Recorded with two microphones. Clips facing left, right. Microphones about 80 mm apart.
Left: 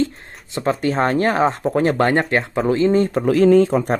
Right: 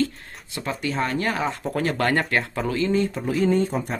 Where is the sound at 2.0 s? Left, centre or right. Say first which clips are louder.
Left 5 dB; left.